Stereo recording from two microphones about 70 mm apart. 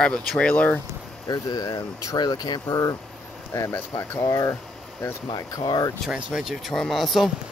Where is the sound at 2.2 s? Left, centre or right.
Left.